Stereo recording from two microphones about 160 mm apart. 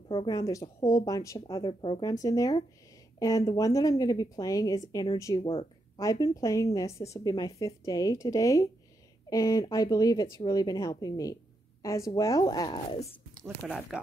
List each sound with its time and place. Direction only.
0.1 s a woman's voice: 30° left (ahead or behind)
1.5 s a woman's voice: 30° left (ahead or behind)
13.9 s speech: 5° right (ahead or behind)